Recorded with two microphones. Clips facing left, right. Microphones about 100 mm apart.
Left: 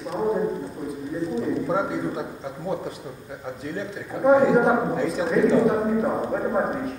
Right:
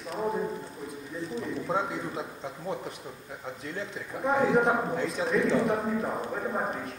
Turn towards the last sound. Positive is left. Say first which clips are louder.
# left 7 dB
turn(degrees=15)  # may be behind; listen again after turning